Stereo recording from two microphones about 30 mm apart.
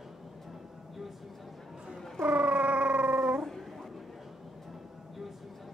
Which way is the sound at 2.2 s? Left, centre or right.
Right.